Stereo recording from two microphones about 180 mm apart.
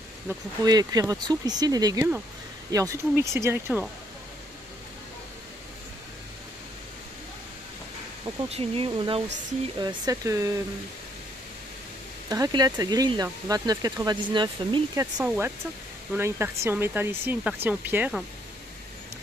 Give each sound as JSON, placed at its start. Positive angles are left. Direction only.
{"t": 0.3, "sound": "speech", "side_deg": -20}
{"t": 8.5, "sound": "speech", "side_deg": -35}
{"t": 12.3, "sound": "speech", "side_deg": -20}
{"t": 15.2, "sound": "speech", "side_deg": -10}